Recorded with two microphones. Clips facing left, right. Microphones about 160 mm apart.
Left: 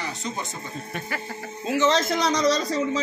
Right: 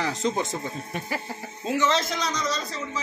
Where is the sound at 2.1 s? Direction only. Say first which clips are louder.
Left 7 dB; 70° left (ahead or behind).